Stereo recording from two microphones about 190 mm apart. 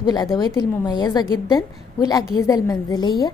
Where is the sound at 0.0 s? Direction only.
20° left (ahead or behind).